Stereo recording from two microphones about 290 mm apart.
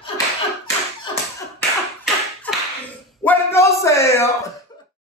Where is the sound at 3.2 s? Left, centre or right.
Centre.